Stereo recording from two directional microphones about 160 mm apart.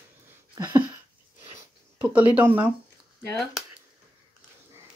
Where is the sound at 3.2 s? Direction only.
Centre (ahead or behind).